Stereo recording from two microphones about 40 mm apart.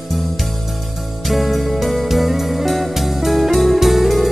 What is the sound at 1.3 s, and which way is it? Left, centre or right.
Music, centre.